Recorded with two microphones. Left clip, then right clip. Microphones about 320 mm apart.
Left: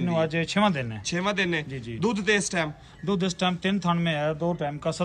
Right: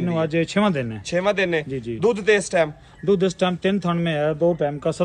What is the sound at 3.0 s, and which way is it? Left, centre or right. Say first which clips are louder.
A man's voice: right 7 dB; left.